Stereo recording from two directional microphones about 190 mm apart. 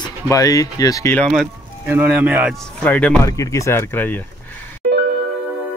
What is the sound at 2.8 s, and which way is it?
Speech, 5° left (ahead or behind).